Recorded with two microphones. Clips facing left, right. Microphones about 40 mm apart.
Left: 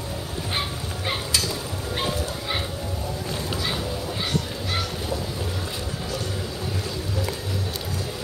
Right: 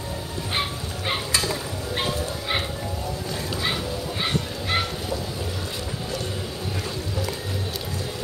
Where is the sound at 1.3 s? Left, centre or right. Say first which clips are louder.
Right 2 dB; right.